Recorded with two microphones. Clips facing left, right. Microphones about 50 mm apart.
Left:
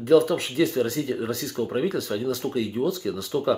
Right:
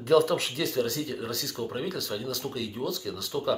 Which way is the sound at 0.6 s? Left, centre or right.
Left.